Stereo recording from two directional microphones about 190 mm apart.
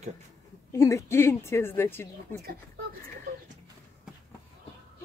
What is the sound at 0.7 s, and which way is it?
Speech, 15° left (ahead or behind).